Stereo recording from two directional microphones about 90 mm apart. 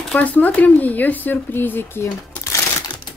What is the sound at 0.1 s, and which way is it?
Speech, 15° left (ahead or behind).